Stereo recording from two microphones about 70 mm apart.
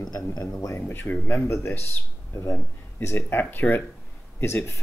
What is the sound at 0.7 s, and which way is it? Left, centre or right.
Speech, left.